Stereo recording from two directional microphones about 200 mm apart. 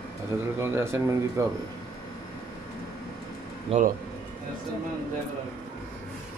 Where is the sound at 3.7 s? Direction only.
40° right (ahead or behind).